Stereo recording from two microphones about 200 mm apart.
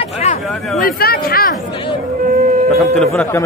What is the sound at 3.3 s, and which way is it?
Speech, 15° left (ahead or behind).